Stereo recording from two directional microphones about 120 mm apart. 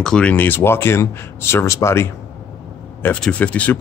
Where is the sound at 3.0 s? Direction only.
10° left (ahead or behind).